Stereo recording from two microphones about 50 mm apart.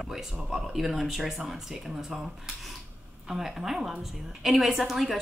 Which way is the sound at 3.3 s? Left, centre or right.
Centre.